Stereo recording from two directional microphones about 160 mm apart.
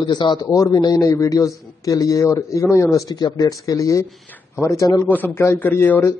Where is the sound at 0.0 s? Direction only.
30° left (ahead or behind).